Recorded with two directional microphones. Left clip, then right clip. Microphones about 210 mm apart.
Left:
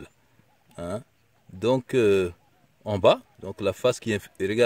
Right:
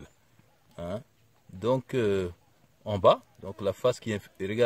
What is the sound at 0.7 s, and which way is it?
Speech, 40° left (ahead or behind).